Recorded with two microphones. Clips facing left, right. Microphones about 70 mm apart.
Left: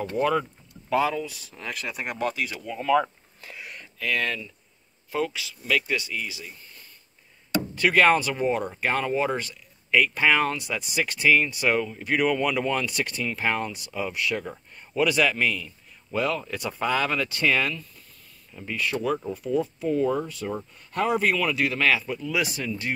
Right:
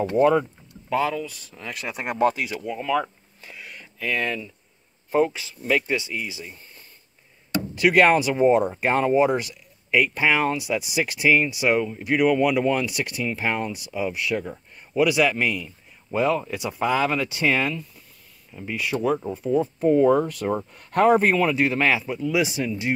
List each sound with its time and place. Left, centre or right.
0.2 s speech: right
0.8 s speech: centre
2.0 s speech: right
2.4 s speech: centre
3.5 s a sound: centre
3.8 s speech: centre
5.1 s speech: right
7.7 s speech: centre
19.8 s speech: right
21.2 s speech: right